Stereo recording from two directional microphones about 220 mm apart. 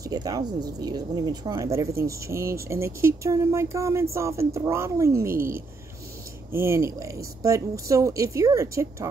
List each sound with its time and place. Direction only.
0.0 s speech: 15° right (ahead or behind)
6.5 s speech: 10° right (ahead or behind)